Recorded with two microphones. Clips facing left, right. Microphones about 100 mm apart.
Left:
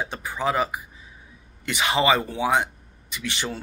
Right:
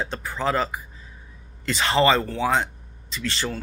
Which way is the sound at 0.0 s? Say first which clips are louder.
Even; 15° left (ahead or behind).